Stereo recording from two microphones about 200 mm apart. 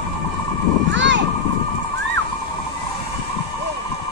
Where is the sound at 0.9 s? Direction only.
65° right (ahead or behind).